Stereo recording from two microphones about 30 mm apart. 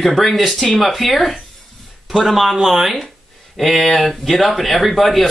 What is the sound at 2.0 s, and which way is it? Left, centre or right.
Speech, centre.